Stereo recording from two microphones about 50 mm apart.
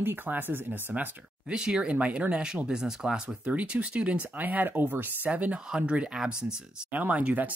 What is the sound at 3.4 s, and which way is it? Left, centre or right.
Speech, right.